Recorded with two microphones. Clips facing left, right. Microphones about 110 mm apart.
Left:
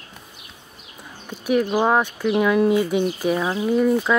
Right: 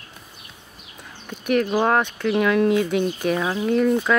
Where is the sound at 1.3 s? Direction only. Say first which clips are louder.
Left 1 dB; 10° left (ahead or behind).